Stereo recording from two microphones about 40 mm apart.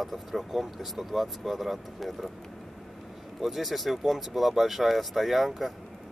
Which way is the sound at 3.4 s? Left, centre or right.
Centre.